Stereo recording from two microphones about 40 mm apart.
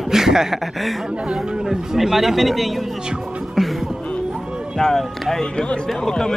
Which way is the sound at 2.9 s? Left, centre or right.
Centre.